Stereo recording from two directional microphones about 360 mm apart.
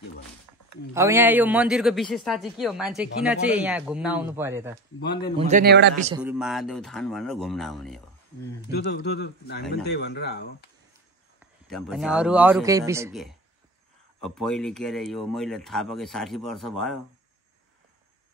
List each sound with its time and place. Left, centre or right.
0.9 s speech: centre
5.5 s a man's voice: right
6.2 s speech: centre
8.6 s speech: left
11.6 s speech: centre